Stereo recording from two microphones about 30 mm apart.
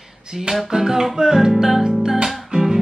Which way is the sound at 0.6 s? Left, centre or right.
Centre.